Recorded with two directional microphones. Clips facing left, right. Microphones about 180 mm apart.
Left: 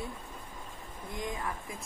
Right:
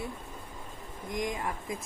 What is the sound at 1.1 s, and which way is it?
Speech, 15° right (ahead or behind).